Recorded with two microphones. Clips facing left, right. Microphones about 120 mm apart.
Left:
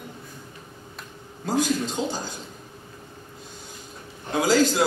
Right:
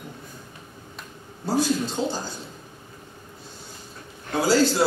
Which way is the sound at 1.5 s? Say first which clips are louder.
Right 1 dB; 15° left (ahead or behind).